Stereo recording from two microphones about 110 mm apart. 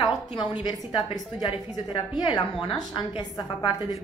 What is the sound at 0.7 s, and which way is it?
Speech, 55° left (ahead or behind).